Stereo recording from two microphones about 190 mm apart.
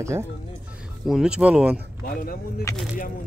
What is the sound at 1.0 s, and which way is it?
Speech, centre (ahead or behind).